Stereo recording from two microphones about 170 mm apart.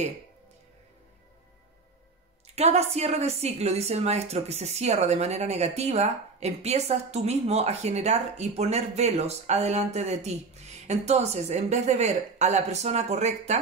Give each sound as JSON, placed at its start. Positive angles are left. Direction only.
{"t": 2.4, "sound": "a woman's voice", "side_deg": -40}